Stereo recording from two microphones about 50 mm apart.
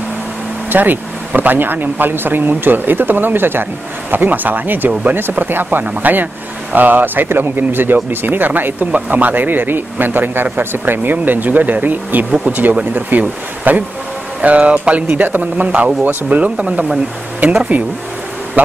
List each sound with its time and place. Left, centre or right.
0.7 s speech: right
14.4 s speech: right